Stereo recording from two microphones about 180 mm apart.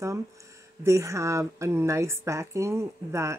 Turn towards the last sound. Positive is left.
turn(degrees=-15)  # may be behind; listen again after turning